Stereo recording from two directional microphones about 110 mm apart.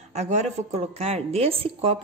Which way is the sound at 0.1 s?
90° right.